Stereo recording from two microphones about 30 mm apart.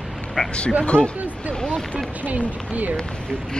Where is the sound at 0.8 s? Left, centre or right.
Left.